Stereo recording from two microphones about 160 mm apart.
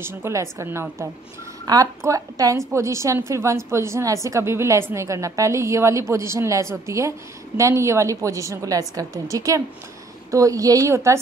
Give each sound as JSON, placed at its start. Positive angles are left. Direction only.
{"t": 0.0, "sound": "a woman's voice", "side_deg": -15}